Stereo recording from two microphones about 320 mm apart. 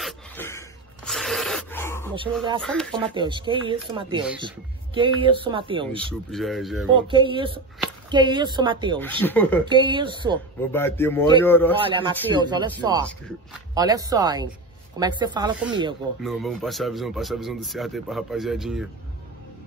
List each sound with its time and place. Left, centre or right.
0.0 s dog: centre
2.6 s speech: centre
3.0 s speech: centre
5.9 s speech: centre
6.9 s speech: centre
9.0 s speech: centre
9.7 s speech: centre
10.7 s speech: centre
11.8 s speech: centre
13.7 s speech: centre
16.2 s speech: centre